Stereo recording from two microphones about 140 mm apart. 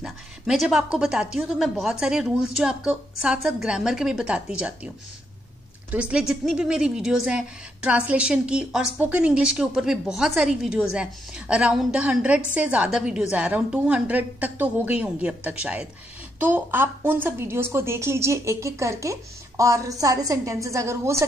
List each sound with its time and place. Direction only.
0.0 s a woman's voice: centre (ahead or behind); by 21.2 s 20° right (ahead or behind)